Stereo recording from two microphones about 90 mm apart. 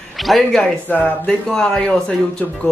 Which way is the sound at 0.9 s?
15° left (ahead or behind).